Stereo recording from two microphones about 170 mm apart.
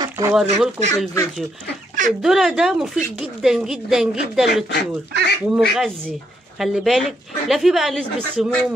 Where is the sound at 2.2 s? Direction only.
Centre (ahead or behind).